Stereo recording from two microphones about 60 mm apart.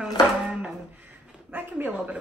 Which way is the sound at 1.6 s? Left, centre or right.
Right.